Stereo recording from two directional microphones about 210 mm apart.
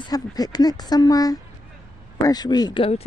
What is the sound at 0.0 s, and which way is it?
Speech, 20° left (ahead or behind).